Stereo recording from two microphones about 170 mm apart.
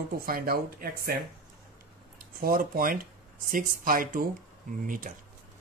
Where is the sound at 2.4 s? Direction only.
55° right (ahead or behind).